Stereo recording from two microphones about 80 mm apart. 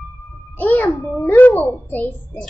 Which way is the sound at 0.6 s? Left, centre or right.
Centre.